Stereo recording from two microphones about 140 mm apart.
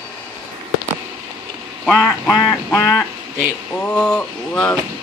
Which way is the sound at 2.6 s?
20° left (ahead or behind).